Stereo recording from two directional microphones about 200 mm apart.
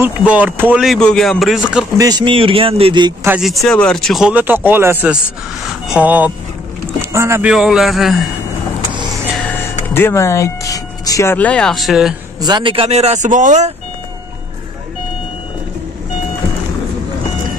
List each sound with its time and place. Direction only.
0.0 s speech: 5° right (ahead or behind)
2.0 s a man's voice: 20° right (ahead or behind)
3.3 s speech: centre (ahead or behind)
7.5 s speech: centre (ahead or behind)
9.8 s speech: 10° left (ahead or behind)
12.4 s speech: 20° right (ahead or behind); by 13.7 s 35° right (ahead or behind)